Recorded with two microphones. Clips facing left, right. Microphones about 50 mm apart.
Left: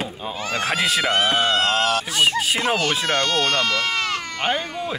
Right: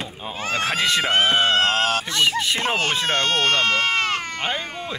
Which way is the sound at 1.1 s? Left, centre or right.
Right.